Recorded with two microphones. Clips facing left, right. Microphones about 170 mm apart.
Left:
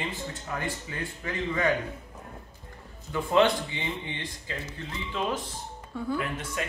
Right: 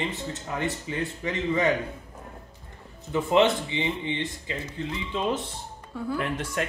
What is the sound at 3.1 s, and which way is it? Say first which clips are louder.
Speech: right 2 dB; 20° right (ahead or behind).